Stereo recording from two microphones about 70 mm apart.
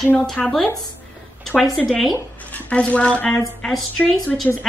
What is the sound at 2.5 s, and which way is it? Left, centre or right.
Speech, centre.